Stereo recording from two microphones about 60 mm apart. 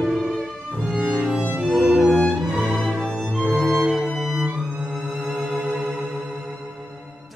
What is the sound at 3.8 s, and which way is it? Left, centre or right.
Music, centre.